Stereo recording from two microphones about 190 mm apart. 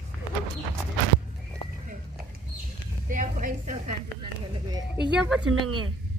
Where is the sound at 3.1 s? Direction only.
45° right (ahead or behind).